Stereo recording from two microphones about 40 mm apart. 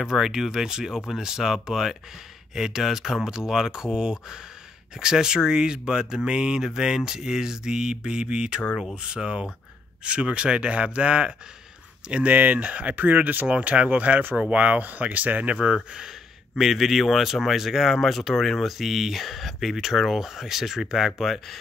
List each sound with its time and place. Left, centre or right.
0.0 s speech: centre; by 15.5 s right
15.5 s speech: centre